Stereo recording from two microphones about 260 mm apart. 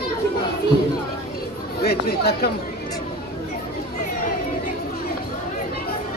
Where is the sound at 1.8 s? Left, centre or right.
Left.